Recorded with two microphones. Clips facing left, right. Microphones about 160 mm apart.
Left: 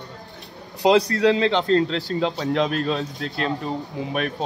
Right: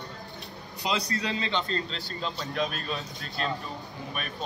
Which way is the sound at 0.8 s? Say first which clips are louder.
Left 13 dB; 85° left.